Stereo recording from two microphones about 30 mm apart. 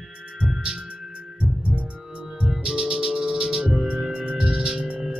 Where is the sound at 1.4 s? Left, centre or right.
Right.